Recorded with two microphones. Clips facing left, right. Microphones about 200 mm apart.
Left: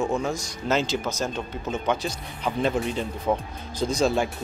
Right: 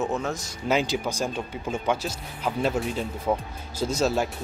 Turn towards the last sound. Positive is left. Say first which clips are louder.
# left 1 dB
turn(degrees=-5)  # may be behind; listen again after turning